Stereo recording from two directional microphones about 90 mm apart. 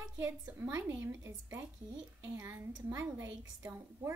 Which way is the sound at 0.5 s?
20° right (ahead or behind).